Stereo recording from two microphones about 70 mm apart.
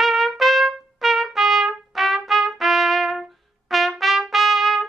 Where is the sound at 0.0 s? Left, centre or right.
Centre.